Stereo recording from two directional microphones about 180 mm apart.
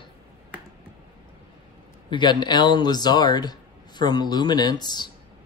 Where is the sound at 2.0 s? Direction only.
25° left (ahead or behind).